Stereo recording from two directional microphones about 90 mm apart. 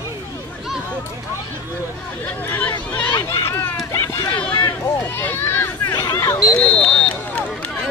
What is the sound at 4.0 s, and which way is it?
Run, 30° left (ahead or behind).